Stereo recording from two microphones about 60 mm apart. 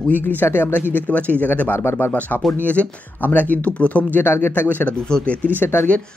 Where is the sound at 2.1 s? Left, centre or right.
Left.